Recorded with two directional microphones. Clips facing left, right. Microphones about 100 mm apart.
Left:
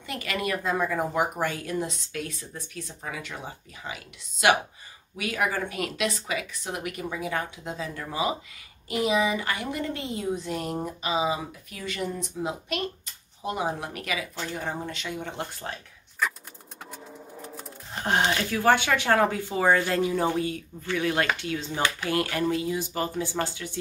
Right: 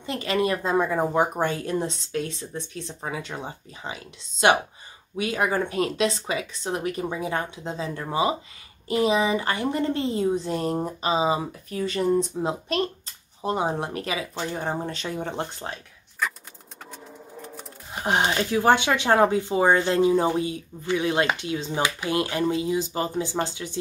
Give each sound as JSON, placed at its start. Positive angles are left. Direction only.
{"t": 0.0, "sound": "a woman's voice", "side_deg": -25}
{"t": 16.2, "sound": "a sound", "side_deg": 0}
{"t": 16.9, "sound": "sewing machine", "side_deg": 5}
{"t": 17.9, "sound": "speech", "side_deg": -20}